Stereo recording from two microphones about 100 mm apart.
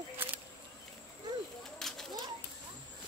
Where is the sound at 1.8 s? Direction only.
5° left (ahead or behind).